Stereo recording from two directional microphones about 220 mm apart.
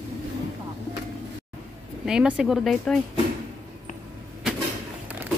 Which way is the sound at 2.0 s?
5° right (ahead or behind).